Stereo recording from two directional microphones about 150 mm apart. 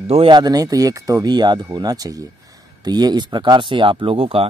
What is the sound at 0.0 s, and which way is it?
Speech, 45° right (ahead or behind).